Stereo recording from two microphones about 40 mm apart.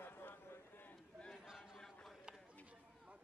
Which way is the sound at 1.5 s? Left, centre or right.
Centre.